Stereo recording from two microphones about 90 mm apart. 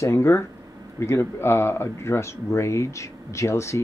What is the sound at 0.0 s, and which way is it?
Speech, 30° left (ahead or behind).